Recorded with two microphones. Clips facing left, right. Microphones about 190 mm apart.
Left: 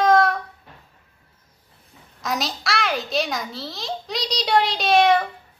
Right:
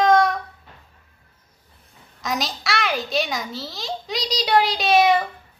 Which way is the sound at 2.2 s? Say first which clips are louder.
Even; centre (ahead or behind).